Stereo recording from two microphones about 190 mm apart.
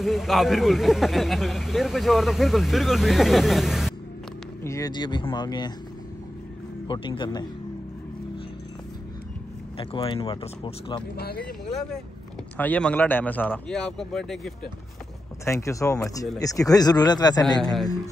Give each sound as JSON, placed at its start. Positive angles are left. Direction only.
{"t": 0.0, "sound": "speech", "side_deg": 0}
{"t": 4.6, "sound": "speech", "side_deg": 20}
{"t": 6.9, "sound": "speech", "side_deg": 25}
{"t": 9.8, "sound": "speech", "side_deg": 30}
{"t": 11.1, "sound": "speech", "side_deg": 55}
{"t": 12.5, "sound": "speech", "side_deg": 10}
{"t": 15.4, "sound": "speech", "side_deg": 15}
{"t": 17.6, "sound": "speech", "side_deg": 0}